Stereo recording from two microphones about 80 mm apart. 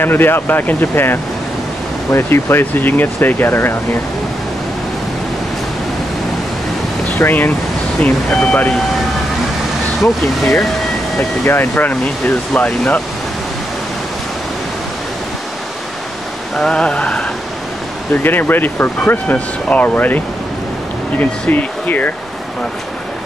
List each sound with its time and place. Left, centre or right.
0.0 s speech: left
7.2 s speech: left
8.0 s a sound: centre
11.1 s speech: left
16.5 s a sound: centre
18.1 s speech: left
21.2 s speech: left